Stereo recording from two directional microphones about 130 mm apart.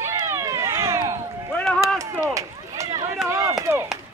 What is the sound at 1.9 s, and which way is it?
Run, 25° right (ahead or behind).